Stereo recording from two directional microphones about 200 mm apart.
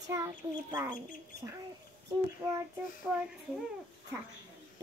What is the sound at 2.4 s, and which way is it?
Speech, 20° right (ahead or behind).